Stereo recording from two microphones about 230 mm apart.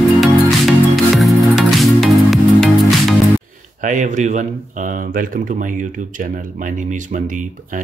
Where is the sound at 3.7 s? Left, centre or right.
Right.